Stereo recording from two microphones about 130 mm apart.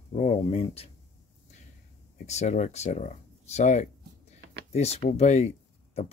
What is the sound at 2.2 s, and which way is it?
Speech, 60° left (ahead or behind).